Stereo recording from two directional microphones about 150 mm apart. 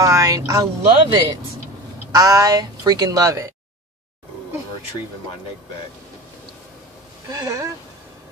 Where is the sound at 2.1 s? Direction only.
25° right (ahead or behind).